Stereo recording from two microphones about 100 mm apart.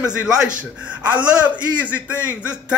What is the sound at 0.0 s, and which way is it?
A man's voice, 10° right (ahead or behind).